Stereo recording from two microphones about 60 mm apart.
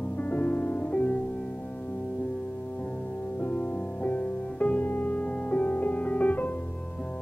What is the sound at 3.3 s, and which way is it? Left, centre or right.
Music, left.